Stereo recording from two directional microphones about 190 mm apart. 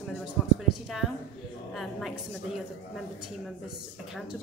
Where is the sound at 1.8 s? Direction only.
Centre (ahead or behind).